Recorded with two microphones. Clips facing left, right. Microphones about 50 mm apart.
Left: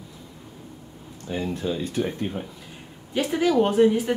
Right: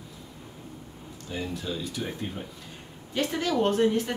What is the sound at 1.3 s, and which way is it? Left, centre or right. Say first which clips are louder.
Speech: left 6 dB; left.